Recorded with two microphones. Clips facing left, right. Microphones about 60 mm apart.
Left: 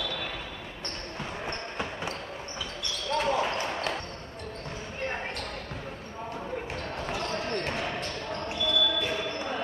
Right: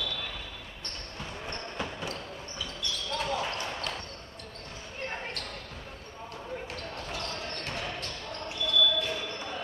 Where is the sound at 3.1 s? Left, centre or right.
Left.